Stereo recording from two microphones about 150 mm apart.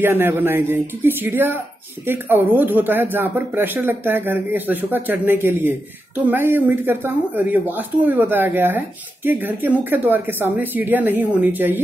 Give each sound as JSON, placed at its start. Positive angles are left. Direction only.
{"t": 0.0, "sound": "speech", "side_deg": -15}